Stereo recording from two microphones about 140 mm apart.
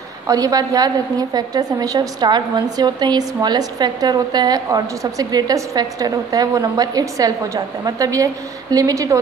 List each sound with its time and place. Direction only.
0.3 s a woman's voice: 25° right (ahead or behind)